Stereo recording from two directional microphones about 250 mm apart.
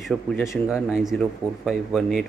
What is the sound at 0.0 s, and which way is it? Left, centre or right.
Speech, centre.